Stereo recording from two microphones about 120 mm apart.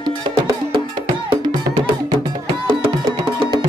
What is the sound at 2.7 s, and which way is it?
Music, 50° right (ahead or behind).